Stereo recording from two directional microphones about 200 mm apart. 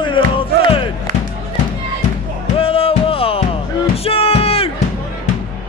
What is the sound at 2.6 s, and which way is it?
Music, 30° left (ahead or behind).